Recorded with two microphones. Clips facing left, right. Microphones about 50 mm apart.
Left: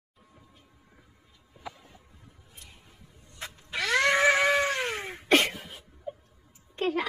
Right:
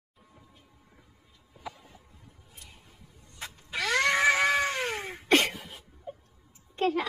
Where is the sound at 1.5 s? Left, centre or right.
Centre.